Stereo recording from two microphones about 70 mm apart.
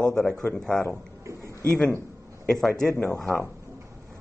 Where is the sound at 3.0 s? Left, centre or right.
Centre.